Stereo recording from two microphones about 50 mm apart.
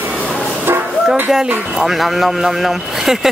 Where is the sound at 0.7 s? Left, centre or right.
Right.